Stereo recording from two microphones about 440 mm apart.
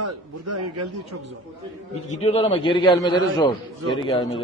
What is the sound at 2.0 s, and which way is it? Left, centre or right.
A man's voice, centre.